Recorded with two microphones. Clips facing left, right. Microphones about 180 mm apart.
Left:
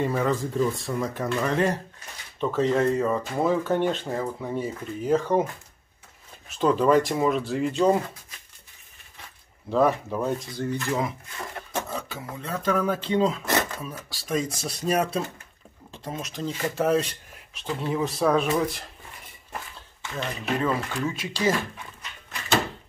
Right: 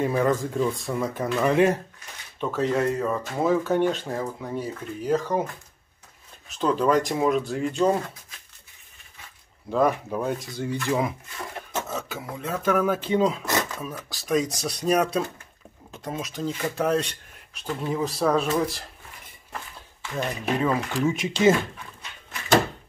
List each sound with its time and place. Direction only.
0.0 s speech: centre (ahead or behind)
6.6 s speech: 5° left (ahead or behind)
9.8 s speech: centre (ahead or behind)
10.5 s speech: 20° right (ahead or behind)
11.9 s speech: 10° right (ahead or behind)
20.2 s speech: 10° right (ahead or behind)